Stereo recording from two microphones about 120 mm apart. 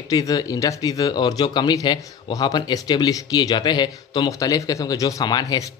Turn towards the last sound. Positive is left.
turn(degrees=35)  # may be behind; listen again after turning